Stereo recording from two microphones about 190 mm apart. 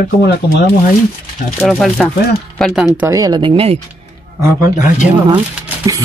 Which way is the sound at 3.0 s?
20° right (ahead or behind).